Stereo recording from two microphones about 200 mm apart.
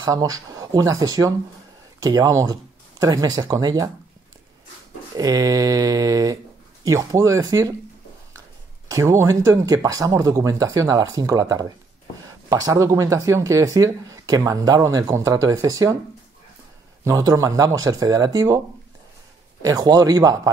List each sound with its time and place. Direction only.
0.0 s speech: 20° right (ahead or behind)
5.1 s speech: 20° right (ahead or behind)
8.9 s speech: 15° right (ahead or behind)
17.0 s speech: 15° right (ahead or behind)
19.6 s speech: 15° right (ahead or behind)